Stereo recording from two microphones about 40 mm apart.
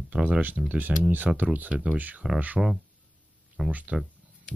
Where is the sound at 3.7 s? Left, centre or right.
Right.